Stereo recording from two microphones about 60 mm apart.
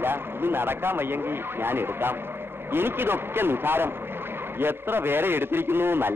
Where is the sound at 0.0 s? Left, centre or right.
Right.